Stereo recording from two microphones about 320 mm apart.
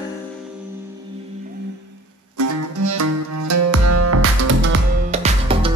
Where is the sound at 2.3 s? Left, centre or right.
Right.